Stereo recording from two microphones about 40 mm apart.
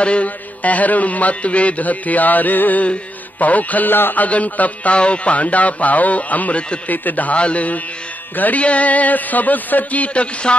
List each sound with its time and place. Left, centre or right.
0.0 s a man's voice: left
2.8 s a man's voice: left
3.9 s a man's voice: left
4.2 s a man's voice: left
7.3 s a man's voice: left